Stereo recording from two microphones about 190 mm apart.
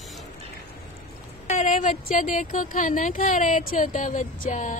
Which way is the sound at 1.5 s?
40° left (ahead or behind).